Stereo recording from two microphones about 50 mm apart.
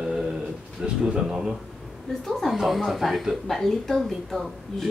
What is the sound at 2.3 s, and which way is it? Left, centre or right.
Speech, centre.